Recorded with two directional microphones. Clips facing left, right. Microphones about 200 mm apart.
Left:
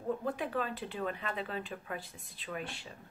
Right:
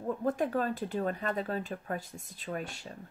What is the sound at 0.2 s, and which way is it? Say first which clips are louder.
A woman's voice: right 5 dB; 45° right (ahead or behind).